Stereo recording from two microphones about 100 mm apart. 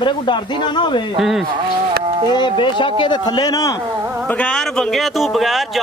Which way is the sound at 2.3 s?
55° left (ahead or behind).